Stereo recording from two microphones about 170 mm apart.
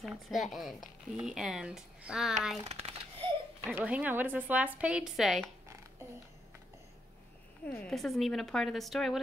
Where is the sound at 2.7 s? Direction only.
35° right (ahead or behind).